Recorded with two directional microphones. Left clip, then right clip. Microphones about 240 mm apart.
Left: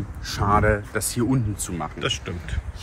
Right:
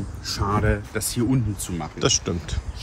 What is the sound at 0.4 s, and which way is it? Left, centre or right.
Speech, centre.